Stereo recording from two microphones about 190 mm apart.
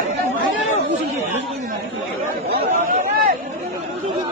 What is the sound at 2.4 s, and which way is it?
Chatter, 60° right (ahead or behind).